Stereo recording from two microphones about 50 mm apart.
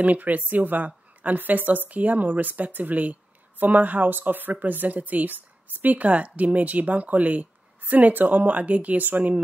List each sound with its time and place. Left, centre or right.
0.0 s a woman's voice: right